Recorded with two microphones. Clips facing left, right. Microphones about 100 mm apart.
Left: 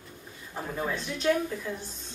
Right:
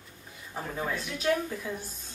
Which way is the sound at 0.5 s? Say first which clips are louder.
Left 1 dB; 5° right (ahead or behind).